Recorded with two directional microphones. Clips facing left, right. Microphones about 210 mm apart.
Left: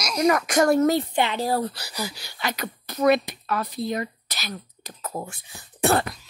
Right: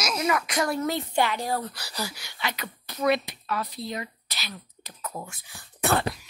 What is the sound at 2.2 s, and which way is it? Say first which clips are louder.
Speech: left 4 dB; 40° left (ahead or behind).